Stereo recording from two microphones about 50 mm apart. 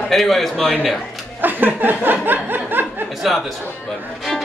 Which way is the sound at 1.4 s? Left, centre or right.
Right.